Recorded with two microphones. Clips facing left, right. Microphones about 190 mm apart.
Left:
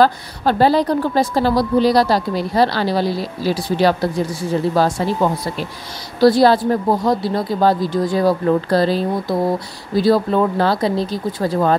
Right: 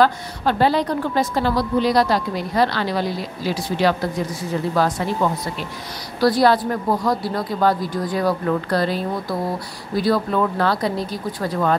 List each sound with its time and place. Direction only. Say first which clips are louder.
0.0 s a woman's voice: left 3 dB; 35° left (ahead or behind)